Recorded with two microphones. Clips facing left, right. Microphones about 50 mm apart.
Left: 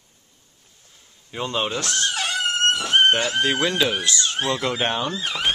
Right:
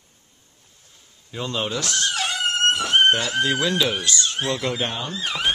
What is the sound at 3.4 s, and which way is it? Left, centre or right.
Speech, left.